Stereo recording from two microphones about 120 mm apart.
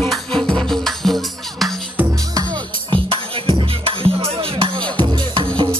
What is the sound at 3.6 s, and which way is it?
Music, 50° right (ahead or behind).